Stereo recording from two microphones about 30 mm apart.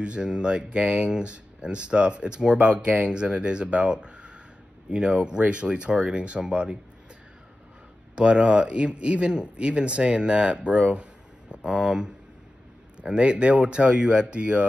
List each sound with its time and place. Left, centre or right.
0.0 s speech: right
2.5 s speech: right
3.1 s speech: right
8.2 s speech: right
11.5 s speech: right
13.0 s speech: right